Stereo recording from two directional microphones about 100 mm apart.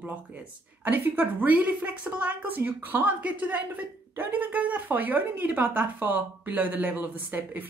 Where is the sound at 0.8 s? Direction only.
20° right (ahead or behind).